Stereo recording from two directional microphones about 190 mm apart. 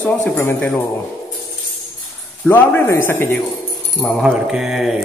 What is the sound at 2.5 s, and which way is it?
Speech, 10° left (ahead or behind).